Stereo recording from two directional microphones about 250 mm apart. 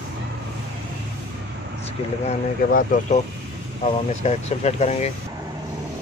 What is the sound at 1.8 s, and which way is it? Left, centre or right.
Speech, left.